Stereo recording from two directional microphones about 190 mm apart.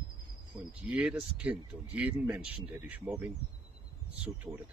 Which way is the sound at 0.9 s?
5° right (ahead or behind).